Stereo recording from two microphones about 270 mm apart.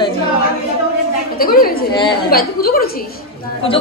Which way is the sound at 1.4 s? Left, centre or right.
Left.